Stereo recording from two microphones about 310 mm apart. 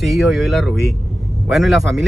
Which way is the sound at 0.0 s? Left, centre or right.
Centre.